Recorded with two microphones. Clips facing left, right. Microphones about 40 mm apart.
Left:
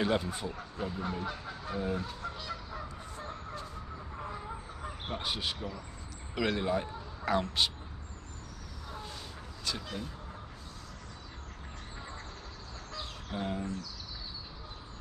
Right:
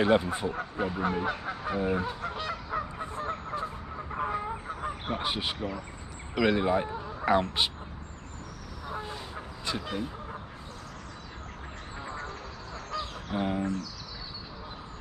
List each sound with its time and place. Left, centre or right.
0.0 s speech: right
0.7 s goose: right
4.1 s chicken: right
5.1 s speech: right
9.7 s speech: right
13.3 s speech: right